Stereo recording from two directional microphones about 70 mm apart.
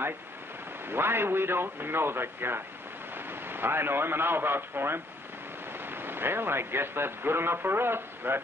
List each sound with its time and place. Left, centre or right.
0.8 s speech: right